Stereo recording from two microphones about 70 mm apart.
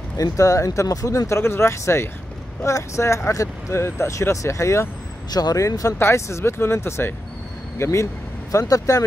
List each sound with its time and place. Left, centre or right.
0.2 s speech: left
5.3 s speech: left
5.6 s speech: left
5.9 s speech: left